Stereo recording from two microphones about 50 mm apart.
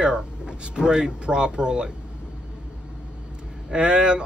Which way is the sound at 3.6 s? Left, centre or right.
Centre.